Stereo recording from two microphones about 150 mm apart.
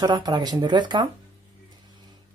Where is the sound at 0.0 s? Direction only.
30° right (ahead or behind).